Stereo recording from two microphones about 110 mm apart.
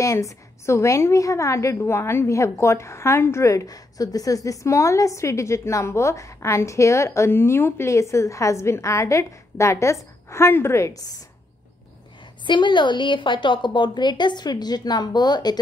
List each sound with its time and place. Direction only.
0.0 s a woman's voice: 30° left (ahead or behind)
12.4 s a woman's voice: 45° left (ahead or behind)